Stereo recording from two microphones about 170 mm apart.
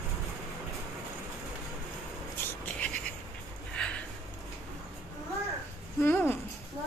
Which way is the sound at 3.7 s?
5° left (ahead or behind).